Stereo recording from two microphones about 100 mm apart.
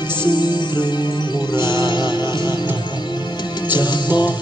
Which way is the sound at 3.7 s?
50° left (ahead or behind).